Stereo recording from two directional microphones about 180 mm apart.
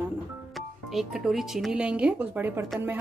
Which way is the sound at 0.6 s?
Centre (ahead or behind).